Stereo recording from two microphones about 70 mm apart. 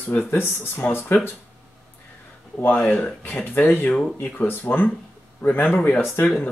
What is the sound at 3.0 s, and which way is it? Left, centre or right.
Speech, left.